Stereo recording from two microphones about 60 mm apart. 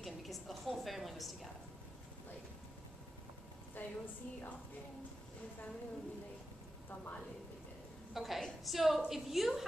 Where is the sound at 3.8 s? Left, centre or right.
Left.